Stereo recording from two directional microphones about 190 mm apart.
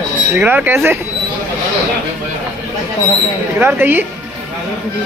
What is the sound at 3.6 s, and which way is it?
Speech, 10° right (ahead or behind).